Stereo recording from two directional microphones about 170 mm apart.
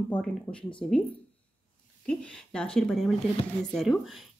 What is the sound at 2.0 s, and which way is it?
Speech, 5° left (ahead or behind).